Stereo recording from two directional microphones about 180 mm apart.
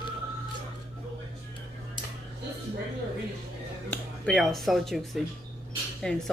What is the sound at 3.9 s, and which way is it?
Speech, centre (ahead or behind).